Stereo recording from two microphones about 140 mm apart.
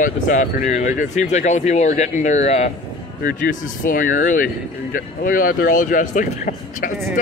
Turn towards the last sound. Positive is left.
turn(degrees=75)  # may be behind; listen again after turning